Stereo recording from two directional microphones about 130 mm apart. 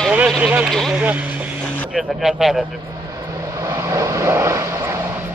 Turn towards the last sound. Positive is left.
turn(degrees=-25)  # may be behind; listen again after turning